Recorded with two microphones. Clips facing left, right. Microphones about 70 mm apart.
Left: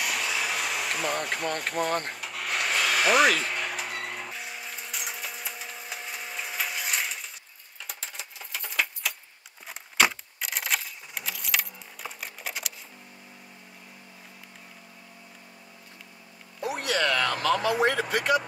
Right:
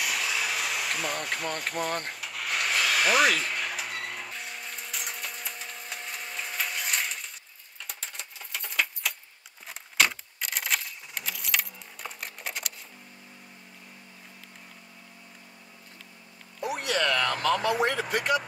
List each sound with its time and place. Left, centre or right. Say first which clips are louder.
0.0 s vehicle: left 1 dB; centre
7.8 s typewriter: left 1 dB; centre
9.7 s keys jangling: left 2 dB; centre
16.6 s vehicle: left 1 dB; centre